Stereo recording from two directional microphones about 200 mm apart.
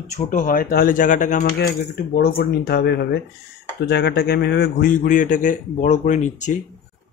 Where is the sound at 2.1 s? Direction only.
50° left (ahead or behind).